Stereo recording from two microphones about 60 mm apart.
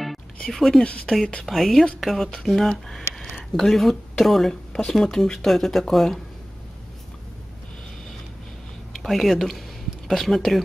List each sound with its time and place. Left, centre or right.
0.5 s speech: centre
8.9 s speech: centre